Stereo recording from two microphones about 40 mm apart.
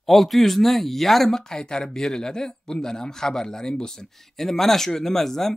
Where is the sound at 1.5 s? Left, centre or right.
Centre.